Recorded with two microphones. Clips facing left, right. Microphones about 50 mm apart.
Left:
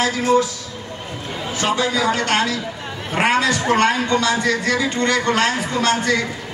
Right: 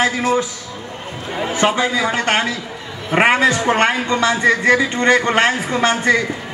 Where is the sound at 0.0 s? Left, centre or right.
Right.